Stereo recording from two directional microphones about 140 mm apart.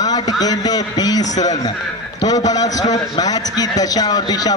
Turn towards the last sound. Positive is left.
turn(degrees=30)  # may be behind; listen again after turning